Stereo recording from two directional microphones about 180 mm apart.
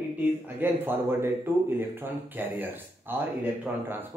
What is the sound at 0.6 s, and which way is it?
Speech, 10° right (ahead or behind).